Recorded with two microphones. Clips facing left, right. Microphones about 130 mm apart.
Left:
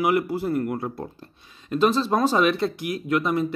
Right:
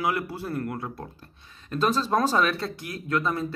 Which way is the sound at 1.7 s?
10° left (ahead or behind).